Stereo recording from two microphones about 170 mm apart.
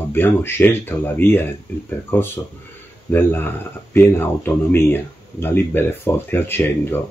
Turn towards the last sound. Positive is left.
turn(degrees=10)  # may be behind; listen again after turning